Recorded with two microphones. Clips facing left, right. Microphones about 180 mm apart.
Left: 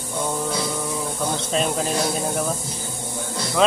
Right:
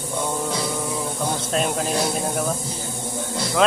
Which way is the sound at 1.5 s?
Centre (ahead or behind).